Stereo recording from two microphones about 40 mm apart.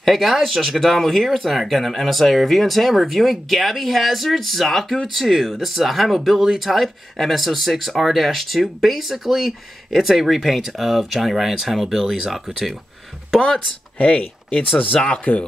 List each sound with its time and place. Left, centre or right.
0.0 s speech: centre
13.9 s speech: left